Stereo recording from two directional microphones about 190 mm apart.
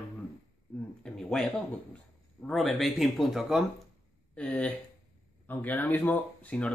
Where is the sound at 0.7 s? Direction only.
5° left (ahead or behind).